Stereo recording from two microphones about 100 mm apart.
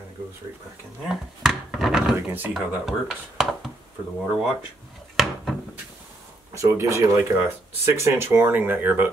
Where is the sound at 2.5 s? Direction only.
Centre (ahead or behind).